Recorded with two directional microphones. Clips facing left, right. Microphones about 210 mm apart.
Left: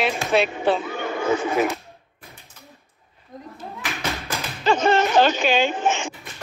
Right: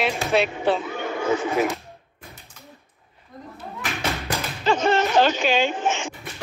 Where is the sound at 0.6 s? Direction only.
50° left (ahead or behind).